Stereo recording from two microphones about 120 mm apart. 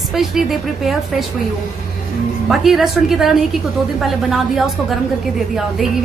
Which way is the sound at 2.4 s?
Centre (ahead or behind).